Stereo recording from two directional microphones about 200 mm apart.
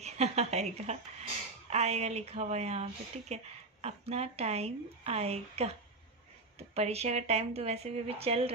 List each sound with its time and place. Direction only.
0.0 s a woman's voice: 35° right (ahead or behind)
6.7 s speech: 30° right (ahead or behind)